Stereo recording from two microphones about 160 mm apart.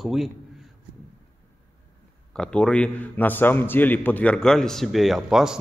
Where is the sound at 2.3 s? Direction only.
5° left (ahead or behind).